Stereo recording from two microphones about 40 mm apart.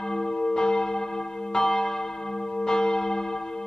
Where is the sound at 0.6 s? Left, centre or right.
Centre.